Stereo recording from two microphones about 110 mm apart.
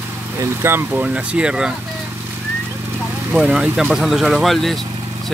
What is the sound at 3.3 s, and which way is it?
Speech, 5° right (ahead or behind).